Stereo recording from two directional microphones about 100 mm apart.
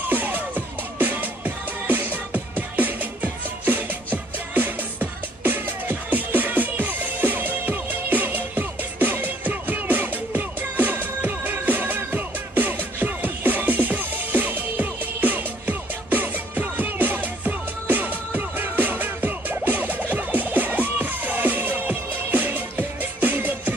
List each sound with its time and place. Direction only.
0.1 s music: 15° right (ahead or behind)